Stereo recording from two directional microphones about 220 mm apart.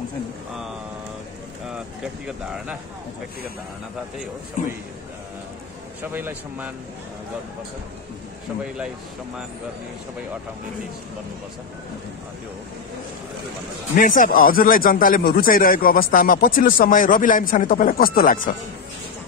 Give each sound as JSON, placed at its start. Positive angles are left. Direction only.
{"t": 2.2, "sound": "speech", "side_deg": -5}
{"t": 6.1, "sound": "a man's voice", "side_deg": -10}
{"t": 13.9, "sound": "speech", "side_deg": 40}